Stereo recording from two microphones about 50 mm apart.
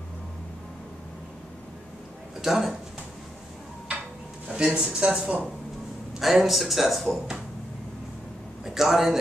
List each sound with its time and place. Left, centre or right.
2.4 s speech: centre
4.6 s speech: centre
6.1 s speech: centre
8.6 s a man's voice: centre